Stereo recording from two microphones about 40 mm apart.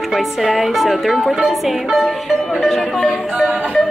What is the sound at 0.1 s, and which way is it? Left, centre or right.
Speech, centre.